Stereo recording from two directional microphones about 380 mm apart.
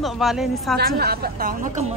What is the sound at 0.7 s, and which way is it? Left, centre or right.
A woman's voice, right.